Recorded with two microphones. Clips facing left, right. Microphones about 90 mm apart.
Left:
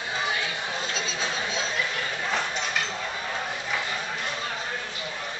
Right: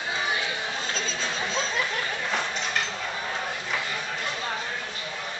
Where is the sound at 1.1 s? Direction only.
5° left (ahead or behind).